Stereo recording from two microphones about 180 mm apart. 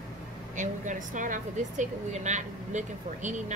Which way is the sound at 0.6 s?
45° right (ahead or behind).